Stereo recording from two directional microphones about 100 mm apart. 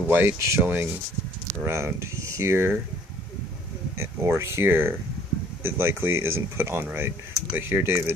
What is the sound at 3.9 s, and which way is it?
Speech, 25° right (ahead or behind).